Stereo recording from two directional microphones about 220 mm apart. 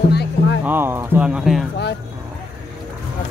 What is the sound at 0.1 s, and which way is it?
Music, 50° left (ahead or behind).